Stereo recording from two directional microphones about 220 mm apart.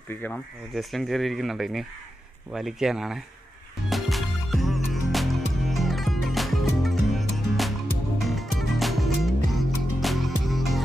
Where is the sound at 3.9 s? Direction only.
Centre (ahead or behind).